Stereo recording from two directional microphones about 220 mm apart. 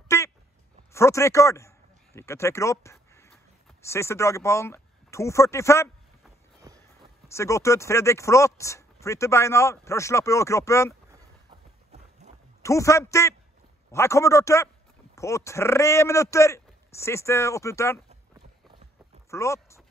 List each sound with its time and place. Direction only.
0.1 s a sound: 10° left (ahead or behind)
0.9 s speech: 15° left (ahead or behind)
6.7 s a sound: 15° right (ahead or behind)
7.2 s speech: 15° left (ahead or behind)
12.6 s speech: 15° left (ahead or behind)
19.3 s speech: 15° left (ahead or behind)